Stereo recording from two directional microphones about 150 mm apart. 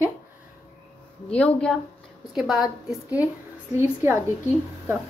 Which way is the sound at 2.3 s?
5° right (ahead or behind).